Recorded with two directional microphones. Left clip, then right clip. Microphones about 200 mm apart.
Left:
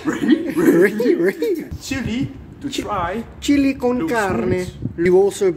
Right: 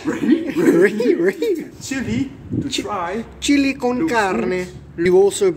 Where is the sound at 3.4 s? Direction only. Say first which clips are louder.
Even; 10° left (ahead or behind).